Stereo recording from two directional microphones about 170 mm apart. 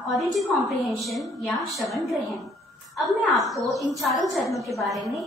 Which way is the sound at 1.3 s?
Centre (ahead or behind).